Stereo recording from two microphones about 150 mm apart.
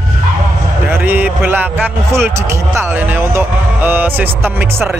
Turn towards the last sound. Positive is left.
turn(degrees=-15)  # may be behind; listen again after turning